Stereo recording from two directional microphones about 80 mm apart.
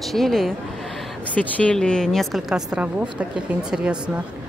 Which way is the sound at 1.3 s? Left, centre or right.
Centre.